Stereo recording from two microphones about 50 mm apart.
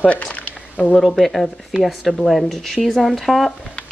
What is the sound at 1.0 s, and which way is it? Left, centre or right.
Speech, centre.